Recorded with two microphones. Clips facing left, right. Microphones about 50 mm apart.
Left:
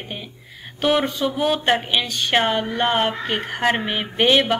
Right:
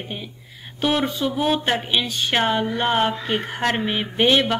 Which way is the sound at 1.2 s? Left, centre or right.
Centre.